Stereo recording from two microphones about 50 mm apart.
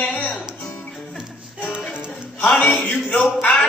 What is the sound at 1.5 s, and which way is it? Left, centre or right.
Music, left.